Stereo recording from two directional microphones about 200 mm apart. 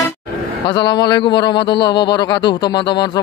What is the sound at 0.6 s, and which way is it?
A man's voice, 20° left (ahead or behind).